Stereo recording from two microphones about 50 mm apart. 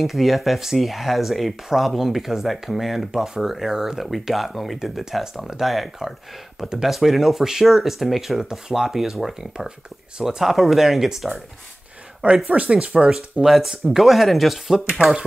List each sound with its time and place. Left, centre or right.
0.0 s speech: centre
12.4 s speech: right
13.1 s speech: centre